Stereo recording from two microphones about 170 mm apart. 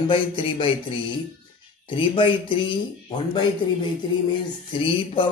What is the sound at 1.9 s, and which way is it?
Mantra, 30° left (ahead or behind).